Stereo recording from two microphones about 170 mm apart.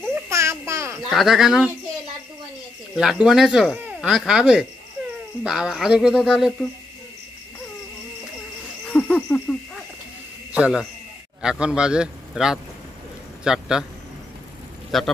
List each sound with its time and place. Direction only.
0.1 s babbling: 15° right (ahead or behind)
1.1 s speech: centre (ahead or behind)
3.0 s speech: 5° right (ahead or behind)
8.9 s hoot: 5° left (ahead or behind)
10.5 s a man's voice: 5° right (ahead or behind)
14.9 s speech: centre (ahead or behind)